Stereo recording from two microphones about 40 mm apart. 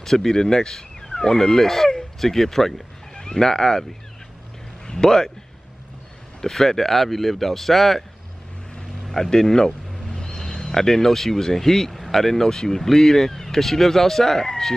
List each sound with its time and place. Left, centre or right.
0.0 s speech: centre
4.8 s speech: centre
6.4 s speech: centre
9.0 s speech: centre